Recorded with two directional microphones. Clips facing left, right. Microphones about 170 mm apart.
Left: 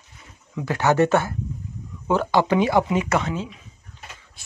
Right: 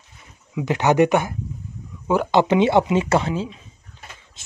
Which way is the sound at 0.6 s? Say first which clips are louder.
Right 2 dB; 20° right (ahead or behind).